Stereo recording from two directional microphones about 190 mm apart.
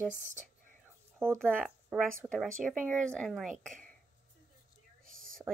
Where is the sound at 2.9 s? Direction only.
5° left (ahead or behind).